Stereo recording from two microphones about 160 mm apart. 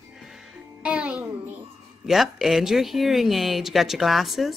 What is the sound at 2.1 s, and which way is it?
Speech, centre (ahead or behind).